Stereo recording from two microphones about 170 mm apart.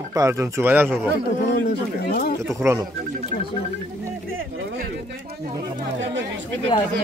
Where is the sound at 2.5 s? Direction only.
15° right (ahead or behind).